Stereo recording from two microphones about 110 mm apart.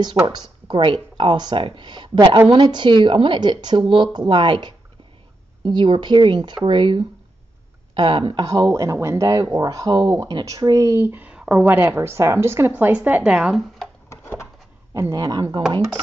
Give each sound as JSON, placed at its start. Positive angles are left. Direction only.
{"t": 0.0, "sound": "speech", "side_deg": -40}
{"t": 8.4, "sound": "speech", "side_deg": -35}
{"t": 15.0, "sound": "speech", "side_deg": -30}